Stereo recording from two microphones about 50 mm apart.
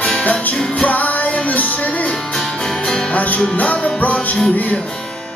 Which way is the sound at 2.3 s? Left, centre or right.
Centre.